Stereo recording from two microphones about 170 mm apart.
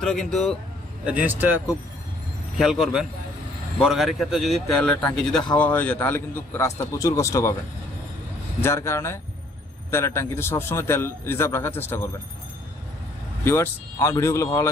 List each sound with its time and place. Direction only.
0.0 s a man's voice: centre (ahead or behind)
1.0 s a man's voice: 10° right (ahead or behind); by 7.5 s 15° left (ahead or behind)
8.5 s a man's voice: 15° left (ahead or behind)
13.4 s a man's voice: 15° left (ahead or behind)